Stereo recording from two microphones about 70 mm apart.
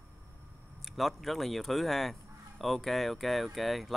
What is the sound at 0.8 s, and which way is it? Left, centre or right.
Speech, centre.